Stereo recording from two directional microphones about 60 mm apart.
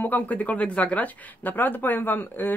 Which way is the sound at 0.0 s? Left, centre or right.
Left.